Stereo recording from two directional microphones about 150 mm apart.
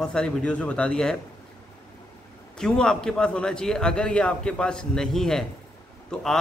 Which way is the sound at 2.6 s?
5° left (ahead or behind).